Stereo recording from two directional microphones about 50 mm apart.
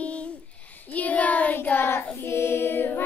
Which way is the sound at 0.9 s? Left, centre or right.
Left.